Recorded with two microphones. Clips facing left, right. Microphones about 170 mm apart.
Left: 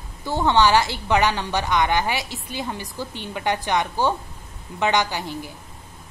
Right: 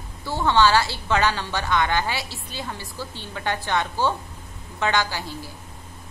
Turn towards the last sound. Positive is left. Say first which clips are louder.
# left 2 dB
turn(degrees=20)  # may be behind; listen again after turning